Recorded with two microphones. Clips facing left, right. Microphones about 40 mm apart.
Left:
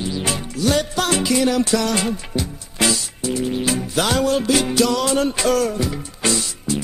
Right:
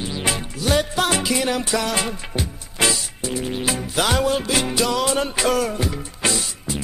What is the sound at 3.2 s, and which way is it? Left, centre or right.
Music, centre.